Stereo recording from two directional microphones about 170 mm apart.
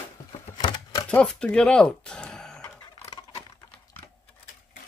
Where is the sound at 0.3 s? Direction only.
30° left (ahead or behind).